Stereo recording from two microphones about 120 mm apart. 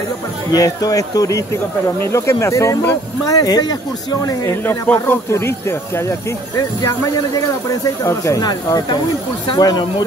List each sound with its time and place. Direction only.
0.5 s speech: 30° left (ahead or behind)
4.5 s speech: 20° left (ahead or behind); by 10.0 s 35° left (ahead or behind)